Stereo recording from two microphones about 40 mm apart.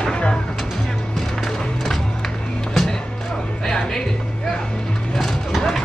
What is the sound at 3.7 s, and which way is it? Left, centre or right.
Music, centre.